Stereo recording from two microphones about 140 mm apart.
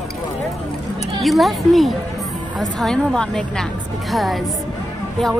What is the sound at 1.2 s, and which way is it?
A woman's voice, centre (ahead or behind).